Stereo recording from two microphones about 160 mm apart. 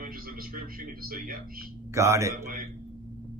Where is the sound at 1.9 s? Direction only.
20° right (ahead or behind).